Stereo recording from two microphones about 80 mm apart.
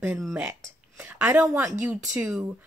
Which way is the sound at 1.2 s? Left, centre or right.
Right.